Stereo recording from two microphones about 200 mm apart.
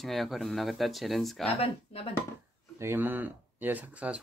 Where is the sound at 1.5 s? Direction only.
30° left (ahead or behind).